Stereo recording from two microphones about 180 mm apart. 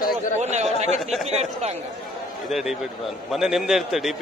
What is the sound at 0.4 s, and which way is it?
Speech, 40° right (ahead or behind).